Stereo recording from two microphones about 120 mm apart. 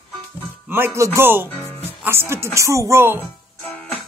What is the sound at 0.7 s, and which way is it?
Music, 20° right (ahead or behind).